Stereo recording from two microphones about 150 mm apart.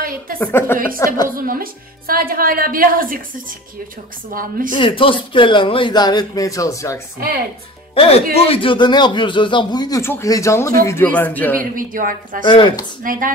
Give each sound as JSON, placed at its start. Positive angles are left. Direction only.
{"t": 0.4, "sound": "a woman's voice", "side_deg": 15}
{"t": 1.3, "sound": "a woman's voice", "side_deg": -75}
{"t": 4.3, "sound": "a woman's voice", "side_deg": -70}
{"t": 4.7, "sound": "a man's voice", "side_deg": 35}
{"t": 7.9, "sound": "a man's voice", "side_deg": 40}
{"t": 11.7, "sound": "speech", "side_deg": -65}
{"t": 12.4, "sound": "a man's voice", "side_deg": 30}
{"t": 13.0, "sound": "a woman's voice", "side_deg": -65}